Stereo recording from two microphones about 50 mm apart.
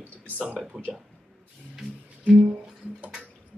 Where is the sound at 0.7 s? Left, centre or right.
Centre.